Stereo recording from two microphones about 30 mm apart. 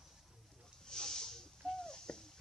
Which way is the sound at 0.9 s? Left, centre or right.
Centre.